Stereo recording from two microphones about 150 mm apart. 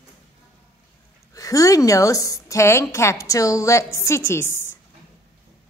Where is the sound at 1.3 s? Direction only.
20° left (ahead or behind).